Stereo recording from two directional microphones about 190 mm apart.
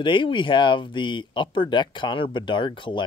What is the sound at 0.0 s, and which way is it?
Speech, 25° left (ahead or behind).